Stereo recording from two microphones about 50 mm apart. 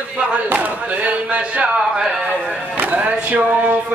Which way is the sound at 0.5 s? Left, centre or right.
Right.